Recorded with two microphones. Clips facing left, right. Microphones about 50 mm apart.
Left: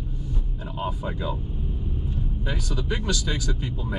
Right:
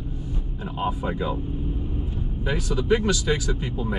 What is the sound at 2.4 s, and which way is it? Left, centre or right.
Speech, centre.